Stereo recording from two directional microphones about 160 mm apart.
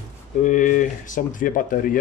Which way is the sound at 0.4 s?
55° left (ahead or behind).